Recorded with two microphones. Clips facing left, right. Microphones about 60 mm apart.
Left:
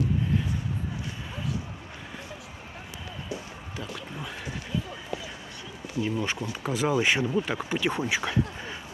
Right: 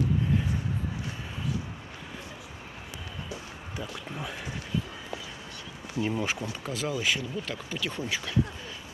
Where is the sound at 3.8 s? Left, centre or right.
Centre.